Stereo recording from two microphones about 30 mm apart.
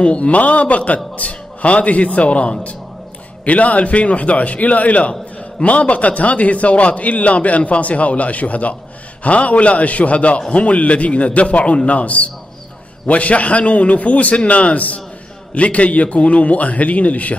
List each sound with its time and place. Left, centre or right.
0.0 s a man's voice: left
3.4 s a man's voice: left